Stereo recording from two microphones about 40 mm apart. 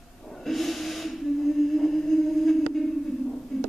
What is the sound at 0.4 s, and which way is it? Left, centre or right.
Snort, centre.